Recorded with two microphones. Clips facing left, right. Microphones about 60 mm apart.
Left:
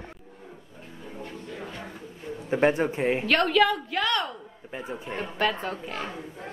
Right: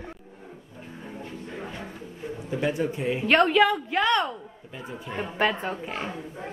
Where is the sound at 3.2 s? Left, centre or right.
Right.